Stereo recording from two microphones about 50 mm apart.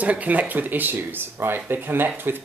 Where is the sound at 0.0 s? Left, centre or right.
Right.